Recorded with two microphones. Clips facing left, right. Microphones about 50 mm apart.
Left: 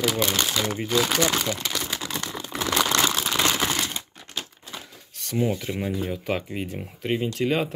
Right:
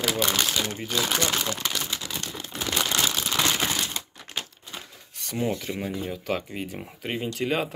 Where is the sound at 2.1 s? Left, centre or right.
Left.